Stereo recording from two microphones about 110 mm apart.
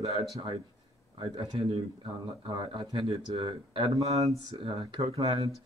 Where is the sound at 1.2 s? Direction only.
55° right (ahead or behind).